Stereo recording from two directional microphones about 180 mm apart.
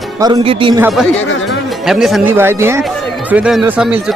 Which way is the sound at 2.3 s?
15° right (ahead or behind).